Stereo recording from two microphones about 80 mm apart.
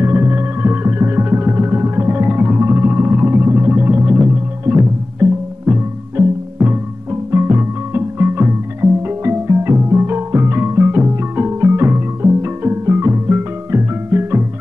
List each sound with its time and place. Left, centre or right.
0.0 s music: right